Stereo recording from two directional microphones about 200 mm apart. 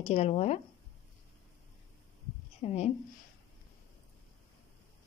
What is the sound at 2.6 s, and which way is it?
Speech, 30° left (ahead or behind).